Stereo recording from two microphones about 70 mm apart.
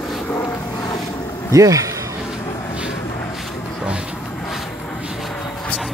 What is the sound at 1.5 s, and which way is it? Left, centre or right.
Speech, right.